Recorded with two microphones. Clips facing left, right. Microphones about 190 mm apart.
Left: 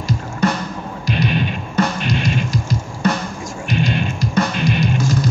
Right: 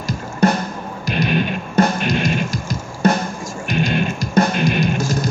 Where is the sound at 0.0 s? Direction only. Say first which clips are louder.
Right 2 dB; 50° right (ahead or behind).